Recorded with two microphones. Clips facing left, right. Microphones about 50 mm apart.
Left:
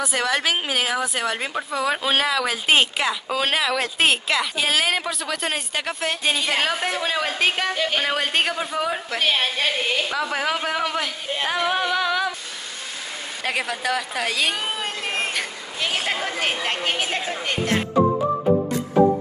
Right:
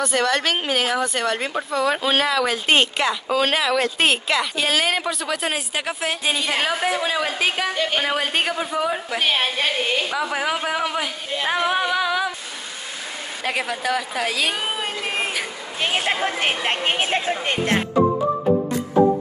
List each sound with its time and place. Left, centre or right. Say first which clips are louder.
0.0 s speech: right 2 dB; centre
11.6 s music: even; centre
13.4 s speech: right 1 dB; centre
15.8 s a sound: right 3 dB; right
16.6 s a woman's voice: right 2 dB; right